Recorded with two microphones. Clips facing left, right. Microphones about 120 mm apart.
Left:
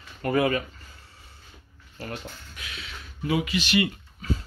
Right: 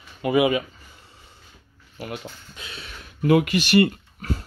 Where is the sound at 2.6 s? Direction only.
35° right (ahead or behind).